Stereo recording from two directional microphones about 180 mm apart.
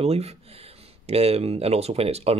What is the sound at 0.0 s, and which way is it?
Speech, 35° right (ahead or behind).